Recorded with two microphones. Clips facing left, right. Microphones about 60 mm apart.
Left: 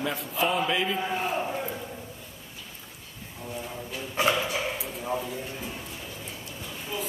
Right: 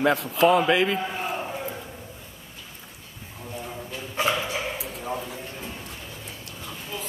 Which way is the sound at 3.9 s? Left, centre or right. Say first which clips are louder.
Even; centre.